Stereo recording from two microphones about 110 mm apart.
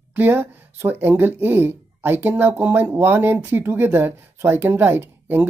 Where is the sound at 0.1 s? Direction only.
15° right (ahead or behind).